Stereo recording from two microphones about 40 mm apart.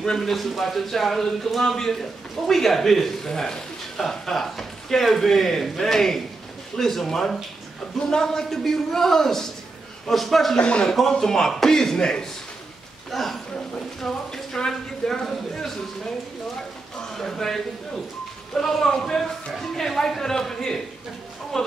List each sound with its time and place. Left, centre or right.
0.2 s a man's voice: centre
10.6 s a man's voice: left
11.1 s a man's voice: centre
13.1 s a man's voice: centre
17.2 s a man's voice: centre